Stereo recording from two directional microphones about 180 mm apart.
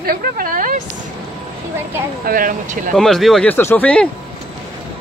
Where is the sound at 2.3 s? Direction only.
50° right (ahead or behind).